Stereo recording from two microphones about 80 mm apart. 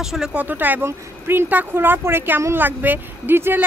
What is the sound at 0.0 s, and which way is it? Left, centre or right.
Speech, centre.